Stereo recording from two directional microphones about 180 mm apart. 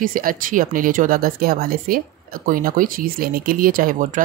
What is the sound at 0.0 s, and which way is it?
Speech, 50° right (ahead or behind).